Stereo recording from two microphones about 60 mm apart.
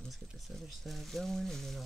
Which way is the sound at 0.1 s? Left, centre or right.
Centre.